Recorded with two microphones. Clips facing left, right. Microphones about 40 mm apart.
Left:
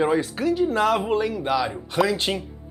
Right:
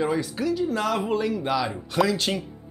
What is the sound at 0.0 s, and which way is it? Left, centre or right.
Speech, left.